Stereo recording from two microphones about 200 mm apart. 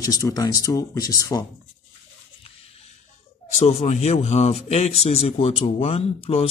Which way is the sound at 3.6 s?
35° left (ahead or behind).